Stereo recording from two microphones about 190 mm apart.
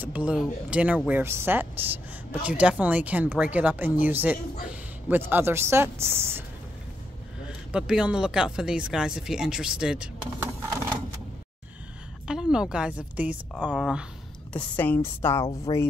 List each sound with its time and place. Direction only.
0.0 s speech: 5° right (ahead or behind)
7.4 s speech: 5° right (ahead or behind)
12.3 s speech: 5° right (ahead or behind)
14.5 s a woman's voice: 10° left (ahead or behind)
15.7 s speech: 25° left (ahead or behind)